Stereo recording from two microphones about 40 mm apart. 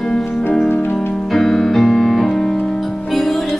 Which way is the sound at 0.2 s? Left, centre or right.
Left.